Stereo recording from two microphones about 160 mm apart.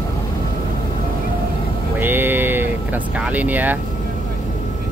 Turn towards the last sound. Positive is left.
turn(degrees=-10)  # may be behind; listen again after turning